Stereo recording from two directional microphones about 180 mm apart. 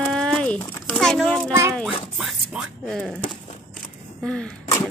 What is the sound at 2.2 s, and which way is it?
Speech, centre (ahead or behind).